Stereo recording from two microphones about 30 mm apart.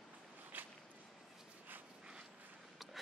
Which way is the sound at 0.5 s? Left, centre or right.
Right.